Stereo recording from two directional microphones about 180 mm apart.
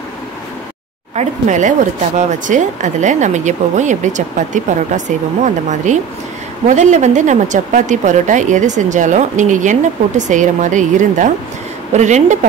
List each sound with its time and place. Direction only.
1.1 s speech: 40° right (ahead or behind)